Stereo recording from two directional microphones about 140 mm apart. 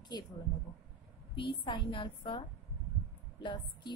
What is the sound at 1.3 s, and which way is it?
Speech, 35° left (ahead or behind).